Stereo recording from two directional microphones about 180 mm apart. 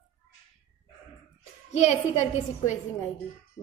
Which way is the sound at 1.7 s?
40° left (ahead or behind).